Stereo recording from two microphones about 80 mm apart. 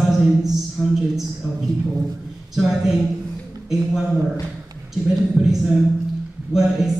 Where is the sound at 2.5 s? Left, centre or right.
Centre.